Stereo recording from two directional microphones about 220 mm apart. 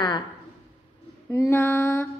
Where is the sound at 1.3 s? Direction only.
10° left (ahead or behind).